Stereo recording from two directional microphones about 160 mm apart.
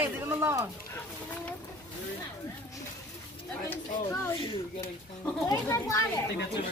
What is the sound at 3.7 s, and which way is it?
Speech, 20° left (ahead or behind).